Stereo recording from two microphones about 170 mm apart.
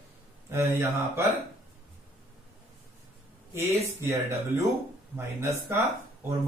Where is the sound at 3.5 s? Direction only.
15° right (ahead or behind).